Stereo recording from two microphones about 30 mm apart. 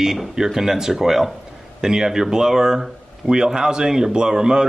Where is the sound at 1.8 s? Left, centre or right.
Centre.